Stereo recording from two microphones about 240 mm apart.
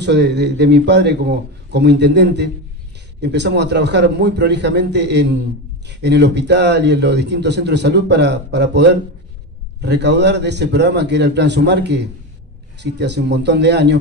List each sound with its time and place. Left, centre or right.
0.0 s a man's voice: right